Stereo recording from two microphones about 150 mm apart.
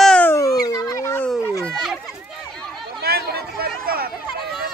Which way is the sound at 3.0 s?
90° right.